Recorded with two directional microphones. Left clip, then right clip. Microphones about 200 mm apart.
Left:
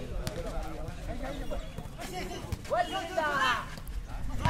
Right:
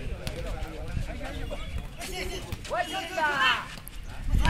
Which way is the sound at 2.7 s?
40° left (ahead or behind).